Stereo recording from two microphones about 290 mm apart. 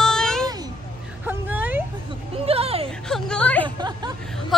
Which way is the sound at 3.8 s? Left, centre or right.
Centre.